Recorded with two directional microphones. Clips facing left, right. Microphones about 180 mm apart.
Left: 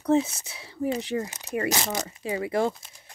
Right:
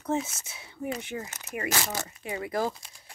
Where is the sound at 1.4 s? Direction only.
35° left (ahead or behind).